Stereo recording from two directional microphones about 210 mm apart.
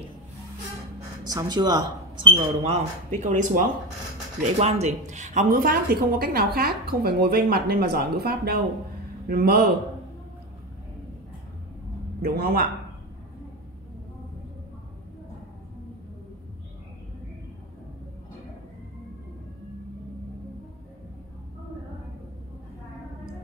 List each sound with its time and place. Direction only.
1.3 s a woman's voice: 20° right (ahead or behind); by 9.7 s 50° right (ahead or behind)
12.2 s a woman's voice: 45° right (ahead or behind)